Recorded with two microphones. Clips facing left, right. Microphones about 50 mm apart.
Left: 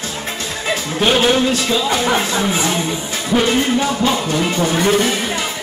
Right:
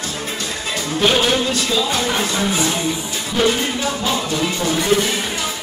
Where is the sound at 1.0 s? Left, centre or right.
Centre.